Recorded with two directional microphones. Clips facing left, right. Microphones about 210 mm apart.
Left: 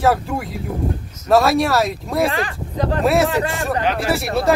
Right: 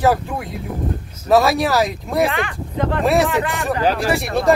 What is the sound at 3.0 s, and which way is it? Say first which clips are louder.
Speech: even; centre (ahead or behind).